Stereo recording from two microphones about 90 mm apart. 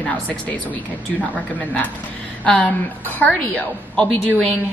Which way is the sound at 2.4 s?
15° left (ahead or behind).